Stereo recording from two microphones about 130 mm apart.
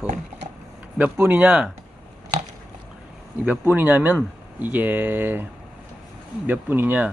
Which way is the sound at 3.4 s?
15° right (ahead or behind).